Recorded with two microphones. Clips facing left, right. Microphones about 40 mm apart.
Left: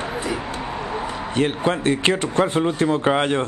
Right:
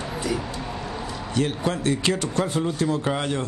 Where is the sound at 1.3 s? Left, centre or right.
Left.